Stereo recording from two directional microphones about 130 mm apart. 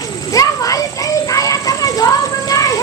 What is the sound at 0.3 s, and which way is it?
Children playing, 25° left (ahead or behind).